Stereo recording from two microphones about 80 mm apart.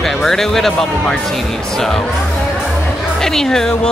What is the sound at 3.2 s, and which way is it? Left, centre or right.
Speech, centre.